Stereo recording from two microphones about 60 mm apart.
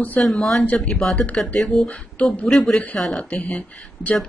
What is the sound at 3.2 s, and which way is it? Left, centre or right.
Speech, left.